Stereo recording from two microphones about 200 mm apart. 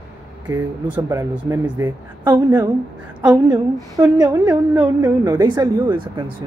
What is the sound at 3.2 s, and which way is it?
Speech, 10° right (ahead or behind).